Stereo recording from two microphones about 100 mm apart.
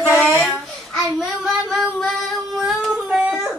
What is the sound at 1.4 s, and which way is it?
Singing, centre (ahead or behind).